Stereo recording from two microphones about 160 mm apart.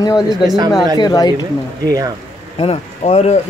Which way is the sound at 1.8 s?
20° right (ahead or behind).